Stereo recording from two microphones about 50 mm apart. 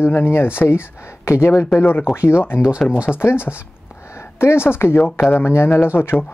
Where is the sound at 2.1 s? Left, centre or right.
Left.